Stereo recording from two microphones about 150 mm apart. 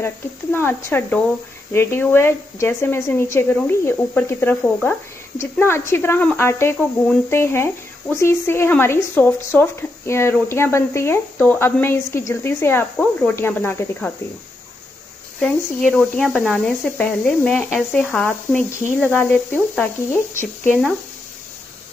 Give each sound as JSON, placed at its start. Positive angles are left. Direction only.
{"t": 0.0, "sound": "speech", "side_deg": 15}
{"t": 15.4, "sound": "speech", "side_deg": 10}